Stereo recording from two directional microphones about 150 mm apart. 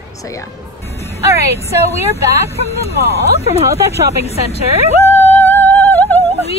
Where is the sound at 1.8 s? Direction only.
45° left (ahead or behind).